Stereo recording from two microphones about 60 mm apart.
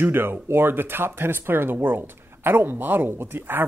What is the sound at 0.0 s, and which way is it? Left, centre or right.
Speech, right.